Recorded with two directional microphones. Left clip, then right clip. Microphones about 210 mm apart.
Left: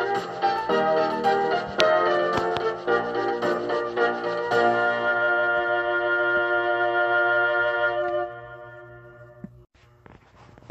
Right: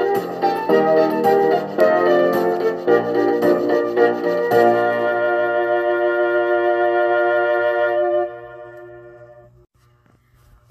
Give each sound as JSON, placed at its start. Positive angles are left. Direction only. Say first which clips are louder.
{"t": 0.0, "sound": "music", "louder": "right 5 dB", "side_deg": -50}